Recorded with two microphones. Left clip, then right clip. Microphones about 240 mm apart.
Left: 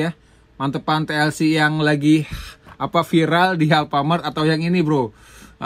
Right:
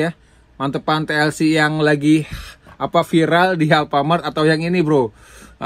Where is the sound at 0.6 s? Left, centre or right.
Left.